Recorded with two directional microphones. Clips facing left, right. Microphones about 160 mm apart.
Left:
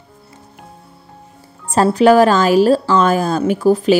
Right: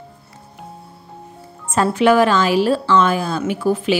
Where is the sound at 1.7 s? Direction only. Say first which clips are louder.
Left 4 dB; 35° left (ahead or behind).